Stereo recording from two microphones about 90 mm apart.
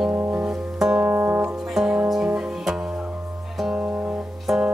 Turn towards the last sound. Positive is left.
turn(degrees=-5)  # may be behind; listen again after turning